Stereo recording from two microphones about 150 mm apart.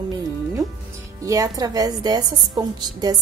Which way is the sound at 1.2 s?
25° right (ahead or behind).